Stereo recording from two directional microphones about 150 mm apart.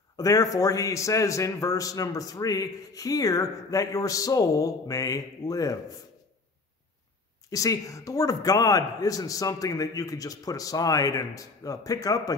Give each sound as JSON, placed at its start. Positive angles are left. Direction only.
{"t": 0.2, "sound": "a man's voice", "side_deg": 25}
{"t": 7.4, "sound": "a man's voice", "side_deg": 25}